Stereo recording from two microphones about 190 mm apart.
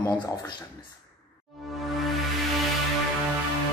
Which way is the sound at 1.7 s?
Centre (ahead or behind).